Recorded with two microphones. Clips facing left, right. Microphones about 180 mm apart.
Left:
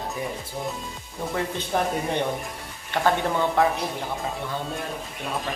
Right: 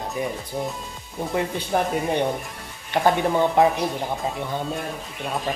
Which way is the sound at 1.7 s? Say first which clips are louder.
Right 2 dB; 5° right (ahead or behind).